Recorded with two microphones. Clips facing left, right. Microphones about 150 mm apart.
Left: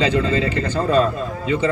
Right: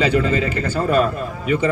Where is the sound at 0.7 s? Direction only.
10° right (ahead or behind).